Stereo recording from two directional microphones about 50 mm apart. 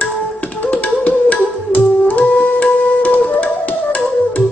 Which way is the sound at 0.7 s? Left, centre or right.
Left.